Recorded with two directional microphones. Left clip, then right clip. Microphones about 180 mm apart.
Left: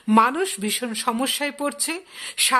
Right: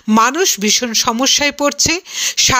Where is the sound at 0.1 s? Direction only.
25° right (ahead or behind).